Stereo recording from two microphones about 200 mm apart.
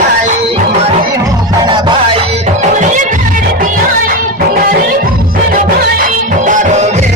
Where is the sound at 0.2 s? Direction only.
40° right (ahead or behind).